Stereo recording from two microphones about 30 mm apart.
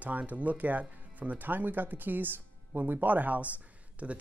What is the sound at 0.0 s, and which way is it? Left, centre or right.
Speech, right.